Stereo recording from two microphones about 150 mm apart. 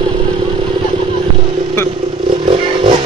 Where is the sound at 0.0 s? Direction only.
35° right (ahead or behind).